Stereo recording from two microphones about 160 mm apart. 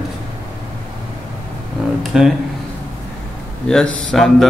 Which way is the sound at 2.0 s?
5° right (ahead or behind).